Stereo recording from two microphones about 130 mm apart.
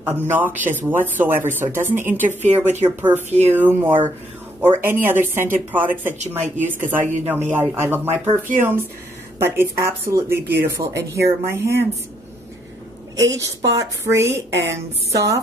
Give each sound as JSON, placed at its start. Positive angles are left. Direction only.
{"t": 0.0, "sound": "speech", "side_deg": -15}
{"t": 6.1, "sound": "speech", "side_deg": -65}
{"t": 7.4, "sound": "speech", "side_deg": -15}
{"t": 13.2, "sound": "speech", "side_deg": -25}